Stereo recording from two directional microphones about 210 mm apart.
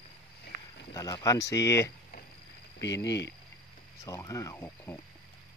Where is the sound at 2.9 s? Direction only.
15° left (ahead or behind).